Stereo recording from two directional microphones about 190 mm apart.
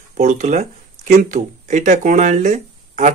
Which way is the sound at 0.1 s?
40° right (ahead or behind).